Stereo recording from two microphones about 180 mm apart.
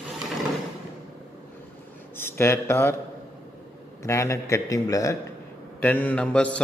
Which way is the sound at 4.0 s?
15° left (ahead or behind).